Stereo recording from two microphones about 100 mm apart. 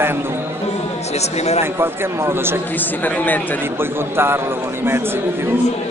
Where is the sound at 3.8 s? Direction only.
25° right (ahead or behind).